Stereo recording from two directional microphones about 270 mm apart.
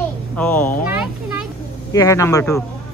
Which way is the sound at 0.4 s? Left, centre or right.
Centre.